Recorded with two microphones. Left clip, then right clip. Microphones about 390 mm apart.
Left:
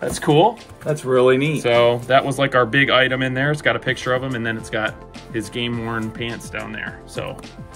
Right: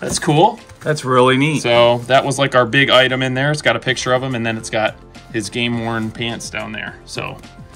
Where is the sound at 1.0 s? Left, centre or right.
Centre.